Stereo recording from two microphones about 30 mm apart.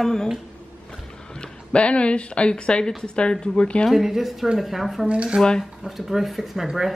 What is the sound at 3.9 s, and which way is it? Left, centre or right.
A woman's voice, centre.